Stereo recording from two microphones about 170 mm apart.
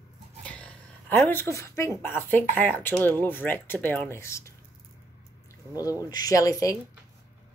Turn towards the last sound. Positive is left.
turn(degrees=20)  # may be behind; listen again after turning